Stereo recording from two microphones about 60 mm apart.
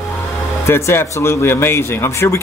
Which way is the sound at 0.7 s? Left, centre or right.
Left.